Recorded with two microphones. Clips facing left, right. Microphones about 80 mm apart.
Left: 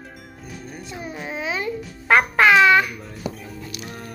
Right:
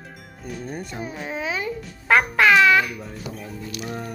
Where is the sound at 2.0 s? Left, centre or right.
Centre.